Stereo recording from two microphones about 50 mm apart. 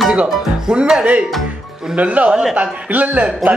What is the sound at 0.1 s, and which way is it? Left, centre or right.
Speech, centre.